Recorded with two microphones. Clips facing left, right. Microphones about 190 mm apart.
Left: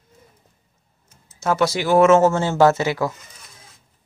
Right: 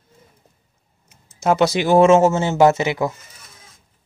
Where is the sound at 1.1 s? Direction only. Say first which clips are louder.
Right 4 dB; 15° right (ahead or behind).